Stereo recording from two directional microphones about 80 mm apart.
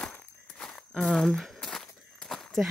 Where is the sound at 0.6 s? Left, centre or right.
Centre.